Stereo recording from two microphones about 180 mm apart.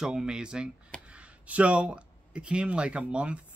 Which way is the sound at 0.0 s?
5° right (ahead or behind).